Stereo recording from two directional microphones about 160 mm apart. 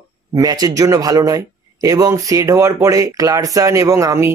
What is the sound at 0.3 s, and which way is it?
Speech, 25° right (ahead or behind).